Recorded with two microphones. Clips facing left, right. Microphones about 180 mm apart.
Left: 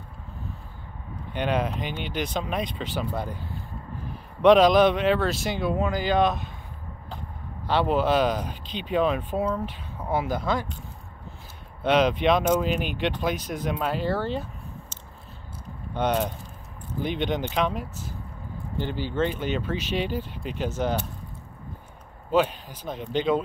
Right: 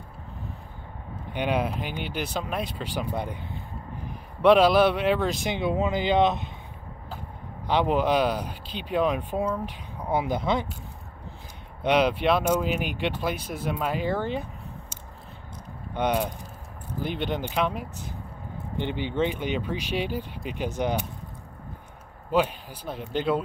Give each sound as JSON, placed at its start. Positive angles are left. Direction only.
{"t": 1.3, "sound": "speech", "side_deg": -10}
{"t": 7.6, "sound": "speech", "side_deg": -15}
{"t": 11.8, "sound": "speech", "side_deg": -10}
{"t": 19.1, "sound": "speech", "side_deg": -15}
{"t": 22.3, "sound": "speech", "side_deg": -10}